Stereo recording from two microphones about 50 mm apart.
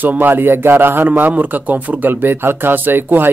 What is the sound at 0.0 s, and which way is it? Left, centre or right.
A man's voice, right.